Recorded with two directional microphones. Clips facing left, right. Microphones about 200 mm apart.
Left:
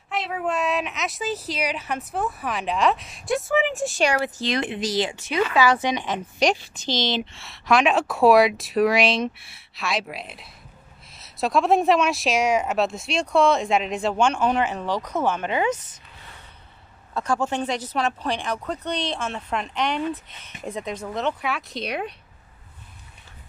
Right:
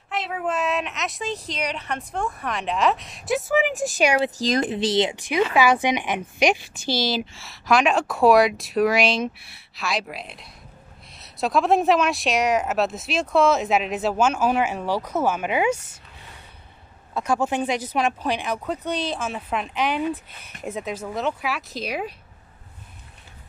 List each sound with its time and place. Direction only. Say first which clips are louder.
0.1 s a woman's voice: even; centre (ahead or behind)
3.7 s speech: right 2 dB; 15° right (ahead or behind)
4.4 s a woman's voice: right 3 dB; 40° right (ahead or behind); by 15.8 s 10° right (ahead or behind)
17.1 s a woman's voice: right 1 dB; 10° right (ahead or behind)